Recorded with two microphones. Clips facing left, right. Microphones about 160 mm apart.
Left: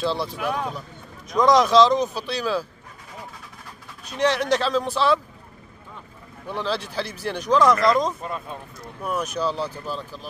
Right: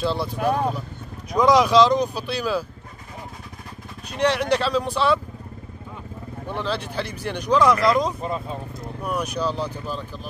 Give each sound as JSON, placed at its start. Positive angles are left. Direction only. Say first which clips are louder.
{"t": 0.0, "sound": "speech", "louder": "right 1 dB", "side_deg": 0}
{"t": 1.4, "sound": "speech", "louder": "even", "side_deg": -5}
{"t": 4.2, "sound": "speech", "louder": "even", "side_deg": 0}
{"t": 6.5, "sound": "speech", "louder": "even", "side_deg": 0}
{"t": 8.2, "sound": "speech", "louder": "right 4 dB", "side_deg": -25}
{"t": 9.0, "sound": "speech", "louder": "even", "side_deg": 5}